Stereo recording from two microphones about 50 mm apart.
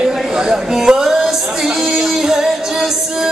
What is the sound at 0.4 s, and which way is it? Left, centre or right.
Music, centre.